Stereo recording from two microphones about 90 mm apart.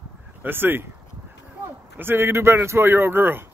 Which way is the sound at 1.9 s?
25° right (ahead or behind).